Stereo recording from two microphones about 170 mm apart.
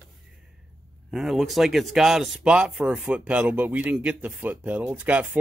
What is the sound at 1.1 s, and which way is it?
Speech, centre (ahead or behind).